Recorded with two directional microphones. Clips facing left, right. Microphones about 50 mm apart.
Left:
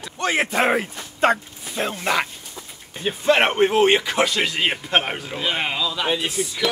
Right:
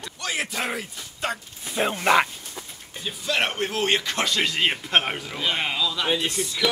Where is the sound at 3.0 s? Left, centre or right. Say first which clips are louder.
Left 8 dB; left; by 6.5 s centre.